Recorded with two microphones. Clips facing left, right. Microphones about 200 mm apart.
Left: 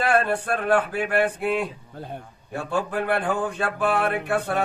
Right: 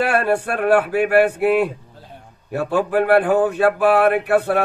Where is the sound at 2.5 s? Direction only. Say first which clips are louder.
Right 7 dB; 60° right (ahead or behind).